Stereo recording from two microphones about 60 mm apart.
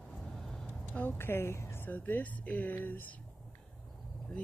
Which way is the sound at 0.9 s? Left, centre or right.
Left.